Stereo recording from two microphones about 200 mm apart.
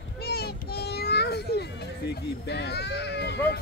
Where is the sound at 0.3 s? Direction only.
50° left (ahead or behind).